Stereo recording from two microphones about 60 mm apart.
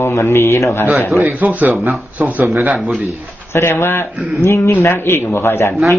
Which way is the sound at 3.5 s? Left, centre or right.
Left.